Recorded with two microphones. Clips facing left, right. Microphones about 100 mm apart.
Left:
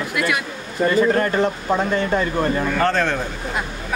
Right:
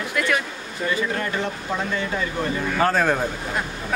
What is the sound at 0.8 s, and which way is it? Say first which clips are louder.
Speech: left 8 dB; 45° left (ahead or behind).